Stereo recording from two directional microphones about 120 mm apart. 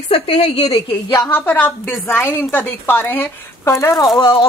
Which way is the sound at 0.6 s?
60° left (ahead or behind).